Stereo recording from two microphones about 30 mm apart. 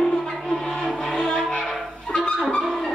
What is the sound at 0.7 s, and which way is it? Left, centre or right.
Music, left.